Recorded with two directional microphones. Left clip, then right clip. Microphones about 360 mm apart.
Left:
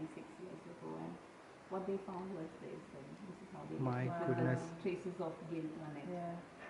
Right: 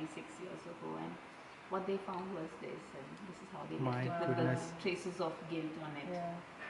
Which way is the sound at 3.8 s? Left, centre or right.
Centre.